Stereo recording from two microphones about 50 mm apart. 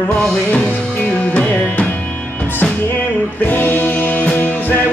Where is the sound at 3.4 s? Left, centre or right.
Left.